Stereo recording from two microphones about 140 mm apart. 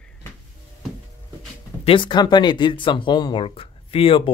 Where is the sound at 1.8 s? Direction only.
40° left (ahead or behind).